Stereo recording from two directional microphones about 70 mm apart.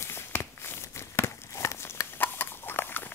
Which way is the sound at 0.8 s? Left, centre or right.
Left.